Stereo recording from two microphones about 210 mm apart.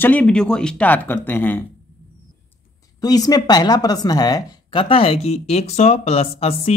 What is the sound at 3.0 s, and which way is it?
Speech, 20° left (ahead or behind).